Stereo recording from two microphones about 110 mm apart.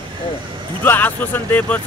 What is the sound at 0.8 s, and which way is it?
Speech, 15° left (ahead or behind).